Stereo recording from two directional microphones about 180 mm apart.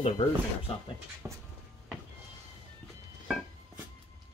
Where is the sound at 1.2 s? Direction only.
15° right (ahead or behind).